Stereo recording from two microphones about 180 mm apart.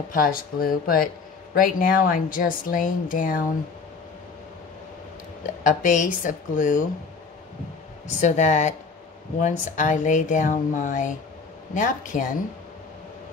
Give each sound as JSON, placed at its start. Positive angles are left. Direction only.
{"t": 0.1, "sound": "speech", "side_deg": 50}
{"t": 5.6, "sound": "speech", "side_deg": 45}
{"t": 8.2, "sound": "speech", "side_deg": 40}